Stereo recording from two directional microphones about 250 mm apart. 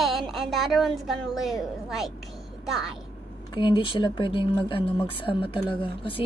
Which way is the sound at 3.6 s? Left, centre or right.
Centre.